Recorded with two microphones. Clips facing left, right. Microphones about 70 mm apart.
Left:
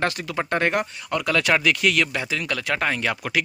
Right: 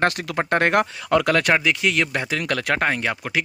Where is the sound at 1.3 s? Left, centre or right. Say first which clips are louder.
Left 1 dB; right.